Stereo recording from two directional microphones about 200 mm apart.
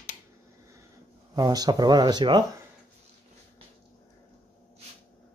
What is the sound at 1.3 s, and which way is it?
Speech, 20° right (ahead or behind).